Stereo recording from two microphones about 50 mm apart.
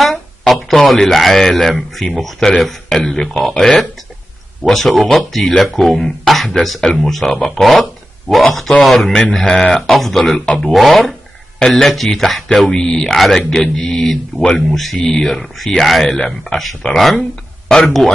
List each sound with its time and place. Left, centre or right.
0.0 s a man's voice: centre
15.0 s speech: left
15.2 s speech: centre